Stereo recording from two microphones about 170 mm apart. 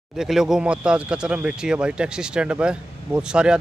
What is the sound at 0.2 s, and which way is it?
A man's voice, 5° right (ahead or behind).